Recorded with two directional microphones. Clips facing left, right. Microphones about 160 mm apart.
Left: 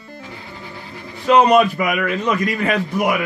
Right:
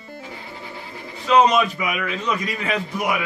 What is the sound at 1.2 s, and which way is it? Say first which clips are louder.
A man's voice: left 4 dB; 55° left (ahead or behind).